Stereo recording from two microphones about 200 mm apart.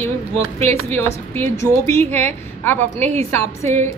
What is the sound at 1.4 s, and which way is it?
A woman's voice, 10° left (ahead or behind).